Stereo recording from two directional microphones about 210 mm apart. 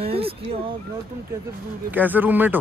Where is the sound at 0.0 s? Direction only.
25° right (ahead or behind).